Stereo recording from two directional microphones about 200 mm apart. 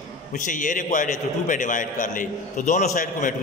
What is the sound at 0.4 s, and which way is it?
A man's voice, 40° left (ahead or behind).